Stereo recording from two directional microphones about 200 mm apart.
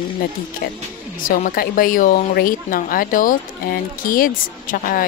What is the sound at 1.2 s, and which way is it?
A woman's voice, 45° left (ahead or behind).